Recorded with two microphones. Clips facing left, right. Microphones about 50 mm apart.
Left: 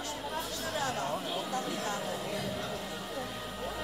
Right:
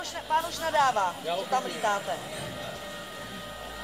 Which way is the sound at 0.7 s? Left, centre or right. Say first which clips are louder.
Right 11 dB; right.